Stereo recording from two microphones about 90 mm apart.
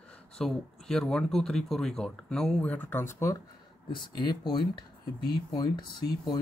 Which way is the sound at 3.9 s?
60° left (ahead or behind).